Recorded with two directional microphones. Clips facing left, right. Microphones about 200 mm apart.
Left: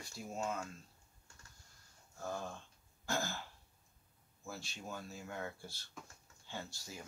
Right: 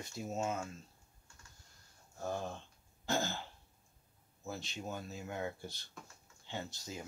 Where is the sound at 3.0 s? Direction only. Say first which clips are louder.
Right 3 dB; 20° right (ahead or behind).